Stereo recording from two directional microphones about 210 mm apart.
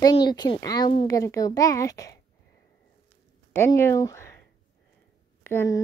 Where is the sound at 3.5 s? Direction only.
10° left (ahead or behind).